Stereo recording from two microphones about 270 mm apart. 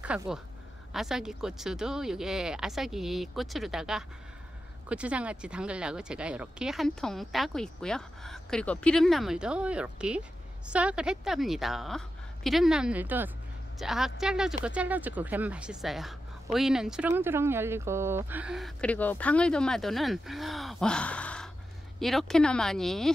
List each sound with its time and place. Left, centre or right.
0.0 s speech: centre